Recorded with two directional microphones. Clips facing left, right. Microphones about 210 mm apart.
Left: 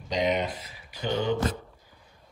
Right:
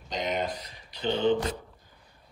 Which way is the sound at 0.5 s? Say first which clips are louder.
Right 1 dB; 5° left (ahead or behind).